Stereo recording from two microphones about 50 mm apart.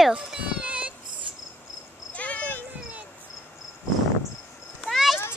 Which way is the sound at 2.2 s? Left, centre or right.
Left.